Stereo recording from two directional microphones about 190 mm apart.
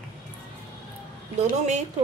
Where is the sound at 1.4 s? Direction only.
40° right (ahead or behind).